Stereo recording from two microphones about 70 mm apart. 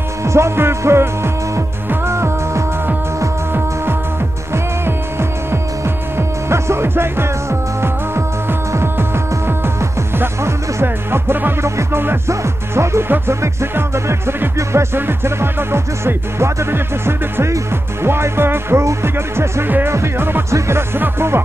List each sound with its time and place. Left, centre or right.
0.2 s music: right
6.1 s music: right
11.6 s music: right